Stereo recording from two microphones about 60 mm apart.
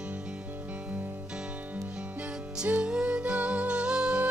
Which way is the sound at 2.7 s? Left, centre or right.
Centre.